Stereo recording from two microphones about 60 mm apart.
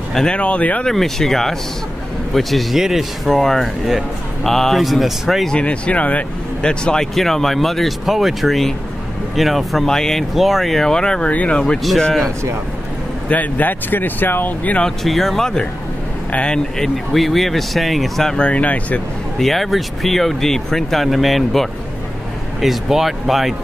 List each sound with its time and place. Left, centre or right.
0.1 s speech: centre
0.4 s speech: left
0.8 s speech: centre
5.5 s speech: centre
6.6 s speech: centre
10.3 s speech: centre
12.0 s speech: centre
13.3 s speech: left
14.9 s speech: centre
18.4 s speech: left
19.3 s speech: centre